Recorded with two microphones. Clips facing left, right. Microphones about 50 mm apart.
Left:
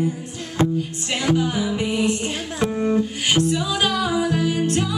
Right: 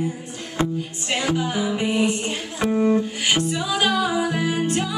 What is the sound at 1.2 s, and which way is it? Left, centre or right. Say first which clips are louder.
Music: left 3 dB; centre.